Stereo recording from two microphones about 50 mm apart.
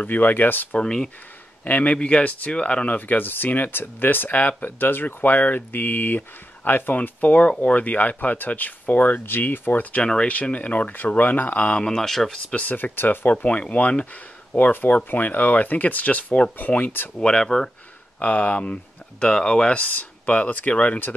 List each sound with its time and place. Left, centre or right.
0.0 s speech: left
0.7 s speech: centre
1.6 s a man's voice: left
3.1 s speech: left
11.8 s speech: centre
12.5 s speech: left
13.3 s speech: left
17.2 s speech: centre
18.2 s speech: left